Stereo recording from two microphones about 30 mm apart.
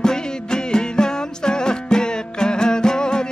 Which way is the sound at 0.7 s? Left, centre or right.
Left.